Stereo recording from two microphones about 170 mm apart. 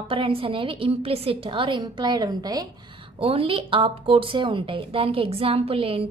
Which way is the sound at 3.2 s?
35° right (ahead or behind).